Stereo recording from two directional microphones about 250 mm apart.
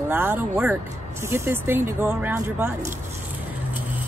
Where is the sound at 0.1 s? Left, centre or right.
Centre.